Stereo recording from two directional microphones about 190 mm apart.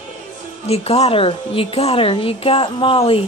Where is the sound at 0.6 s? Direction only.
35° left (ahead or behind).